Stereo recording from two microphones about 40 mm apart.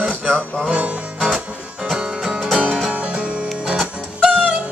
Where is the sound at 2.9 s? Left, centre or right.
Right.